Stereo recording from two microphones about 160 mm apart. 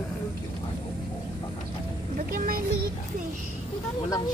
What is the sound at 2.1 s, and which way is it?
Speech, 65° right (ahead or behind).